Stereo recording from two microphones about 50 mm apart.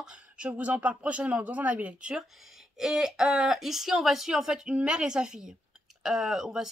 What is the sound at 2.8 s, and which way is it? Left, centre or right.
Speech, centre.